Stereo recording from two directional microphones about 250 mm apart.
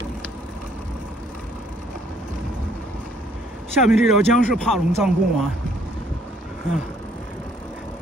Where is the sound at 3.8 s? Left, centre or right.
Centre.